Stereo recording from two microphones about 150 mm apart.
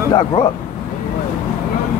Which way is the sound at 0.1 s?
30° left (ahead or behind).